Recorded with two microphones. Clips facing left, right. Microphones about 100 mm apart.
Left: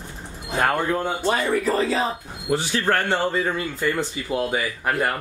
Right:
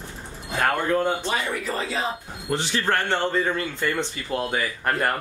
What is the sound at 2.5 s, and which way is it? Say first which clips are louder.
Speech: left 2 dB; 5° left (ahead or behind).